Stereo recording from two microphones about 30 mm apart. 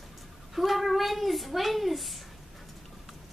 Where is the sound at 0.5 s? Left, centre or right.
Centre.